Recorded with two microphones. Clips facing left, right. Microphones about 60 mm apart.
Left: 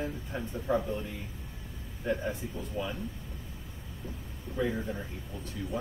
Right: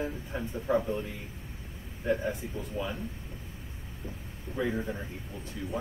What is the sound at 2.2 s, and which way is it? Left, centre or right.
Speech, centre.